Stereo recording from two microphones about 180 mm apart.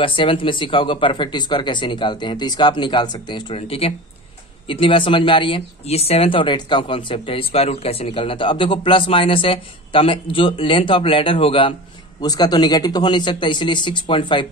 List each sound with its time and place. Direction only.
0.0 s speech: 30° left (ahead or behind)